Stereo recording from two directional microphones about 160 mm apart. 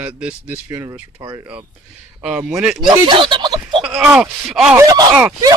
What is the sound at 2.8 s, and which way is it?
Speech, 30° right (ahead or behind).